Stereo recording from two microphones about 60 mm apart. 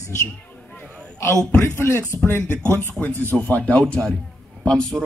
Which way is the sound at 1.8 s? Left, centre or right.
Left.